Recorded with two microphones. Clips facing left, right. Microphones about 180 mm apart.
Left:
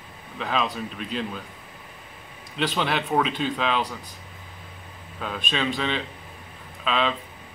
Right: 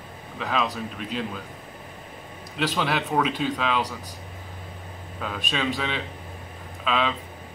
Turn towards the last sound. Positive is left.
turn(degrees=-5)  # may be behind; listen again after turning